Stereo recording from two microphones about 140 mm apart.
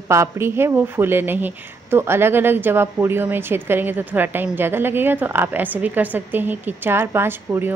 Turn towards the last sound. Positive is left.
turn(degrees=-15)  # may be behind; listen again after turning